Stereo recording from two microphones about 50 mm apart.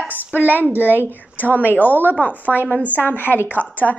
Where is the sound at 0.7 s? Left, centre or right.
Left.